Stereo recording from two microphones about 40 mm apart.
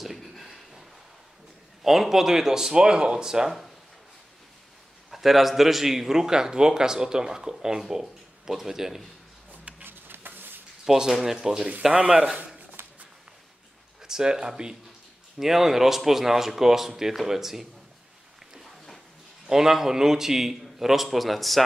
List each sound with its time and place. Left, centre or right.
0.0 s a sound: centre
1.8 s a man's voice: centre
5.1 s a man's voice: centre
9.8 s a sound: right
10.9 s a man's voice: centre
12.8 s a sound: right
14.0 s speech: centre
15.3 s a man's voice: centre
19.4 s a man's voice: centre